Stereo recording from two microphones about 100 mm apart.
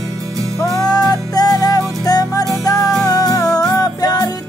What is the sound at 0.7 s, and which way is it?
Music, 40° left (ahead or behind).